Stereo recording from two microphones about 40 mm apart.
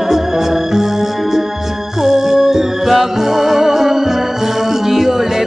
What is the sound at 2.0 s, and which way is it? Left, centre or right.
Music, centre.